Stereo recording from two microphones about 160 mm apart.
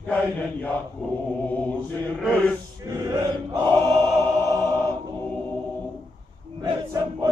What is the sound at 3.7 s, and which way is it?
Music, 20° right (ahead or behind).